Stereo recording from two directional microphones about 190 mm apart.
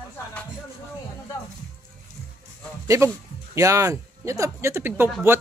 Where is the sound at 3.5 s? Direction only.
15° right (ahead or behind).